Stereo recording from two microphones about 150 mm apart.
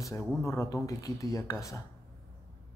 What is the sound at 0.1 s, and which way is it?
Speech, 20° left (ahead or behind).